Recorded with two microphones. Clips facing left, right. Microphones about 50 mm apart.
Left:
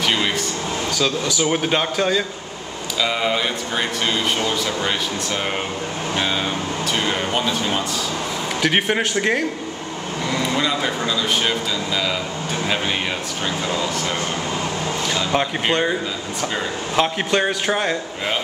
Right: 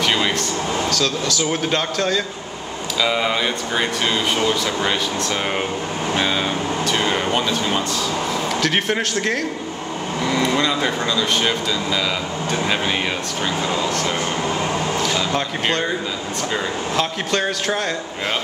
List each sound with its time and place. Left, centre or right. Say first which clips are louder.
0.0 s a sound: right 1 dB; centre
0.9 s a man's voice: even; centre
3.0 s speech: right 1 dB; centre
6.9 s a sound: right 1 dB; centre
8.6 s a man's voice: left 4 dB; centre
10.6 s speech: right 1 dB; centre
15.3 s a man's voice: left 2 dB; centre
16.9 s a man's voice: left 4 dB; centre